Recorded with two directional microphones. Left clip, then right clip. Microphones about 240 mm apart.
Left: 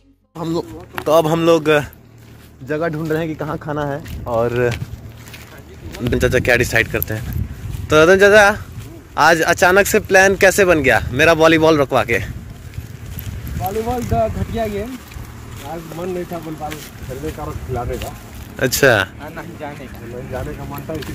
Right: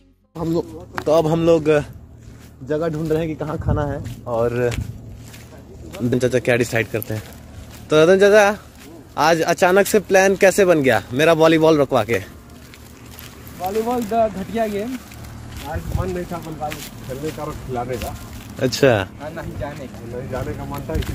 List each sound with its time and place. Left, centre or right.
0.6 s speech: centre
2.7 s speech: centre
3.3 s speech: left
5.9 s speech: centre
13.7 s speech: centre
17.4 s speech: centre
20.3 s speech: centre